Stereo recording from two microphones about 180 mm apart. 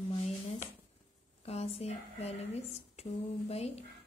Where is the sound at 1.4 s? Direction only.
35° left (ahead or behind).